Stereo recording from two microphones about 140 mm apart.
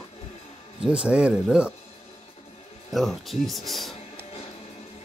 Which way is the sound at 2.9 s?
Centre (ahead or behind).